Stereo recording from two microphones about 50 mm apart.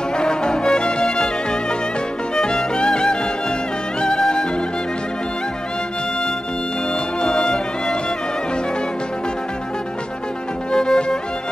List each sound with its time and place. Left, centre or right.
0.2 s music: centre
7.2 s music: centre
10.7 s music: centre